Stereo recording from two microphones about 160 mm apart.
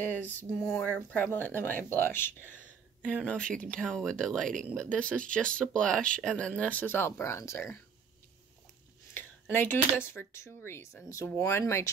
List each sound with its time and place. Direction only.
0.1 s speech: 10° left (ahead or behind)
9.1 s speech: 15° left (ahead or behind)